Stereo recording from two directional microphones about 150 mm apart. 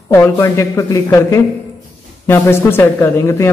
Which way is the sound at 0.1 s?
15° left (ahead or behind).